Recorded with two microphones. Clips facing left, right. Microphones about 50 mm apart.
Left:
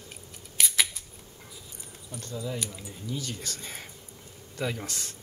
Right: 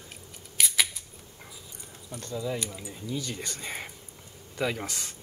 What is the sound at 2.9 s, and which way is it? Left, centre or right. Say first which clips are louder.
Speech: right 2 dB; right.